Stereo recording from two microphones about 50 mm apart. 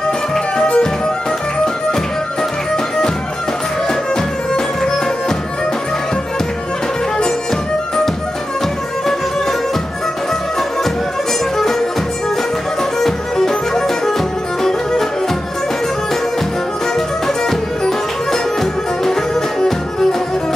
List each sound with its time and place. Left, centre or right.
0.6 s music: centre
13.0 s music: centre
17.5 s music: centre